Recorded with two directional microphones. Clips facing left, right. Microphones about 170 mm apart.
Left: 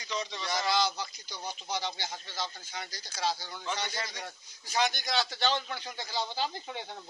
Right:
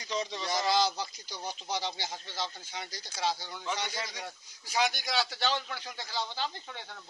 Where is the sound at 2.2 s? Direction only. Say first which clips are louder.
Right 1 dB; 25° right (ahead or behind).